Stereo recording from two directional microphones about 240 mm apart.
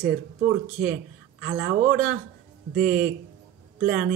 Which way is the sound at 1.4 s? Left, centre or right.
Centre.